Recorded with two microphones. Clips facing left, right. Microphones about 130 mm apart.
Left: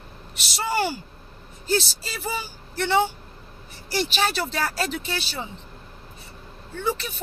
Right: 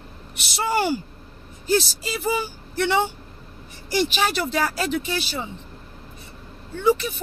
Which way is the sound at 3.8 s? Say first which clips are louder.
Right 2 dB; 15° right (ahead or behind).